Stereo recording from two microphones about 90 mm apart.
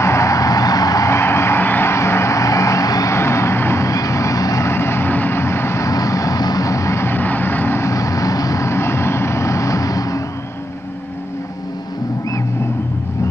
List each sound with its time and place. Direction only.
0.0 s vehicle: 35° left (ahead or behind)
5.9 s vehicle: 40° left (ahead or behind)